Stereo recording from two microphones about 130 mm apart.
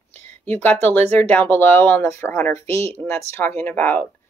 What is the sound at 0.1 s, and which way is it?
Speech, 15° left (ahead or behind).